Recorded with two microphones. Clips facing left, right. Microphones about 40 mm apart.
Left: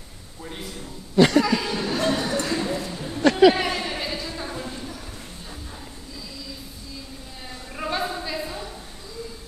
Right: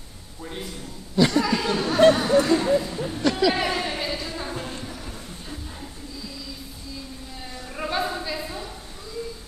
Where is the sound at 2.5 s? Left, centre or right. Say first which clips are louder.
Right 5 dB; centre.